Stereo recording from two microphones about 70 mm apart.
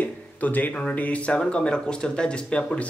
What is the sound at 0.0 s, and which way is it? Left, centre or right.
Speech, left.